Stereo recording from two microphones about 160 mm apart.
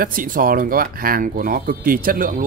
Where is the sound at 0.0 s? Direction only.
60° right (ahead or behind).